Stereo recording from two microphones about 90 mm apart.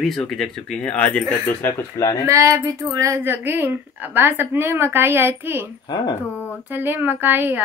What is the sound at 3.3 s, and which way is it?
A woman's voice, 20° right (ahead or behind).